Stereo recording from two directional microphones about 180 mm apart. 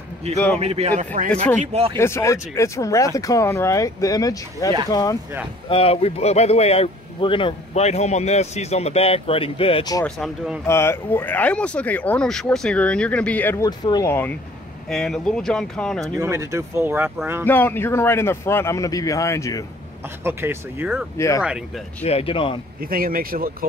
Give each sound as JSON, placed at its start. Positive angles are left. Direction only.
{"t": 0.6, "sound": "speech", "side_deg": -35}
{"t": 2.0, "sound": "speech", "side_deg": 15}
{"t": 5.7, "sound": "speech", "side_deg": 30}
{"t": 10.0, "sound": "speech", "side_deg": 0}
{"t": 10.7, "sound": "speech", "side_deg": 15}
{"t": 13.7, "sound": "speech", "side_deg": 20}
{"t": 14.9, "sound": "speech", "side_deg": 5}
{"t": 16.2, "sound": "speech", "side_deg": -15}
{"t": 17.5, "sound": "speech", "side_deg": 10}
{"t": 20.2, "sound": "speech", "side_deg": -10}
{"t": 22.0, "sound": "speech", "side_deg": 35}
{"t": 22.8, "sound": "speech", "side_deg": -55}